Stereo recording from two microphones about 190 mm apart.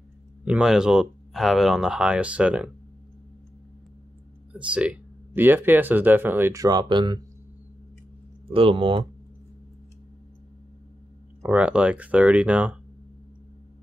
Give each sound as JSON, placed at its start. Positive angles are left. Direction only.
{"t": 0.5, "sound": "speech", "side_deg": -5}
{"t": 4.5, "sound": "speech", "side_deg": -5}
{"t": 8.5, "sound": "speech", "side_deg": -30}
{"t": 11.4, "sound": "speech", "side_deg": -5}